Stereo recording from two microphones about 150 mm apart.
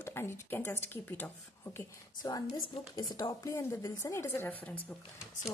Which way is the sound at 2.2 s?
25° left (ahead or behind).